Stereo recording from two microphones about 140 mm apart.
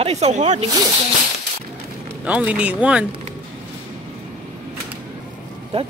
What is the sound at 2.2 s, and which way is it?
Speech, 10° right (ahead or behind).